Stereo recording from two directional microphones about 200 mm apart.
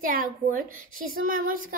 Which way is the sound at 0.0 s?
45° right (ahead or behind).